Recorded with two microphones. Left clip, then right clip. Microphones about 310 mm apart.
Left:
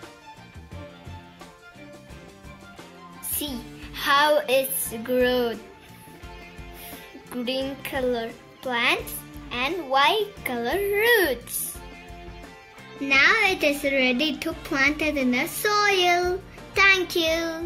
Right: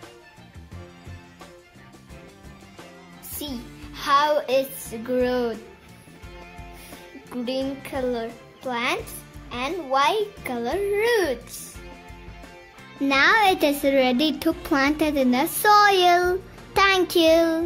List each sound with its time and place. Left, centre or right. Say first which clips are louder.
3.3 s a child's voice: left 1 dB; centre
6.9 s a child's voice: even; centre
13.0 s a child's voice: right 1 dB; right